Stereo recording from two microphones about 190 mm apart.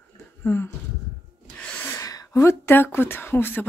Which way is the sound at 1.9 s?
15° left (ahead or behind).